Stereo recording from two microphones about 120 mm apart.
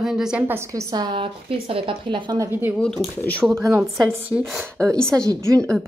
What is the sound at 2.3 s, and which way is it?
Speech, 25° right (ahead or behind).